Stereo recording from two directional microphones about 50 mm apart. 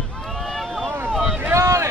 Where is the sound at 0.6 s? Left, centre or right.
Centre.